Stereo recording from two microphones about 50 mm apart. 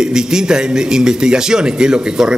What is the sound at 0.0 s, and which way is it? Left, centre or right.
A man's voice, centre.